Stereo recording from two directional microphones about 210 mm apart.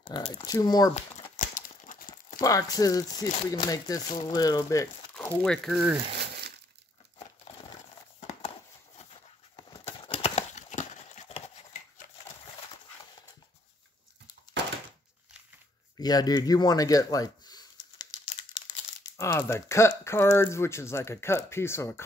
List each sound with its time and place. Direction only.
0.0 s speech: 25° left (ahead or behind)
1.4 s crumpling: 40° left (ahead or behind)
2.4 s speech: 15° left (ahead or behind)
5.1 s speech: 5° left (ahead or behind)
6.1 s a sound: 50° right (ahead or behind)
9.9 s horse: 25° left (ahead or behind)
16.0 s a sound: 20° left (ahead or behind)
19.1 s speech: 15° left (ahead or behind)